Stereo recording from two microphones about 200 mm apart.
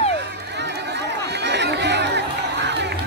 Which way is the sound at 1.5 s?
60° right (ahead or behind).